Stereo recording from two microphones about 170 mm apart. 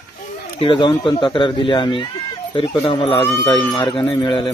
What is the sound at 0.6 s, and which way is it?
Speech, 30° left (ahead or behind).